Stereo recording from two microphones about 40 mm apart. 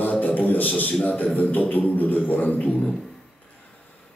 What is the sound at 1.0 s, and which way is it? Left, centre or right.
A man's voice, left.